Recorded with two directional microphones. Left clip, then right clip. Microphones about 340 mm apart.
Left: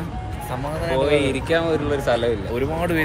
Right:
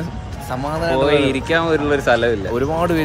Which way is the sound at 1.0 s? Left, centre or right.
Right.